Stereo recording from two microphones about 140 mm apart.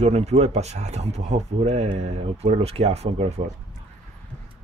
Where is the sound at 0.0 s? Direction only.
50° right (ahead or behind).